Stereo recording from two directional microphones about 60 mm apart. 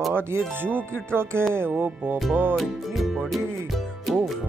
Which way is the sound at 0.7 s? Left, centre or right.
Right.